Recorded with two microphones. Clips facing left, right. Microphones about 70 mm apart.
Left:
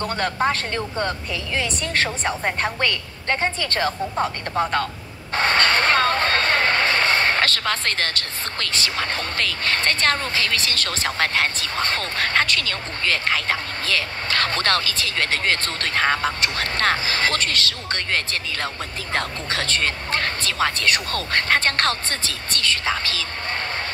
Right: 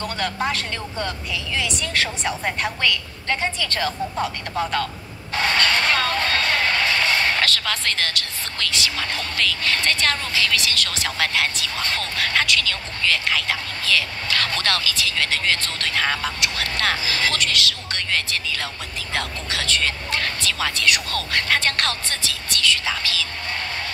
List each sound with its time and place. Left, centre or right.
0.0 s speech: left